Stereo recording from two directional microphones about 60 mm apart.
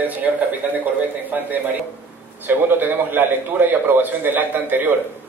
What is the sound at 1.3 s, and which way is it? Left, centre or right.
A man's voice, right.